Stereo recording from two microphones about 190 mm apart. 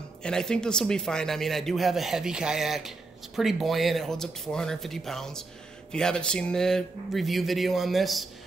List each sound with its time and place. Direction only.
0.2 s speech: 5° left (ahead or behind)